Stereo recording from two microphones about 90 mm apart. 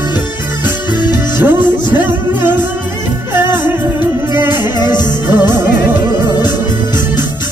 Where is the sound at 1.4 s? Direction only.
20° right (ahead or behind).